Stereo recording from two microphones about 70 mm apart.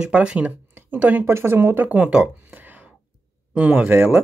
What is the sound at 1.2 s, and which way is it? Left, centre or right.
Speech, right.